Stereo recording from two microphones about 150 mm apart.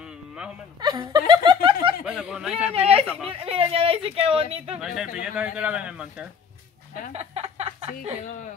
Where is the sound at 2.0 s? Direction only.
5° right (ahead or behind).